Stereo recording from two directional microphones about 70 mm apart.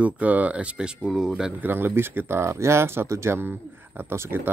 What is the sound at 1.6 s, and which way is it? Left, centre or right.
Speech, right.